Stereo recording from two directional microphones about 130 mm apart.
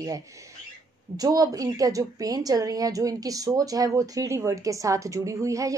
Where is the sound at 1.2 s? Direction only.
30° right (ahead or behind).